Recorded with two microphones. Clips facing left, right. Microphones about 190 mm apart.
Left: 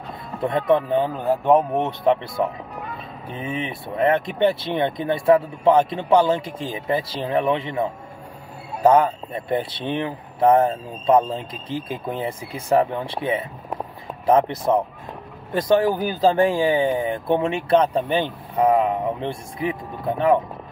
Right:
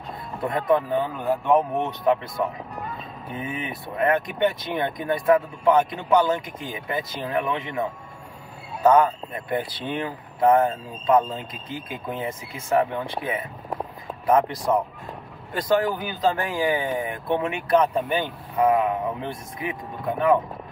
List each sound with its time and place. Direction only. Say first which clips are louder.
0.4 s speech: left 3 dB; 25° left (ahead or behind)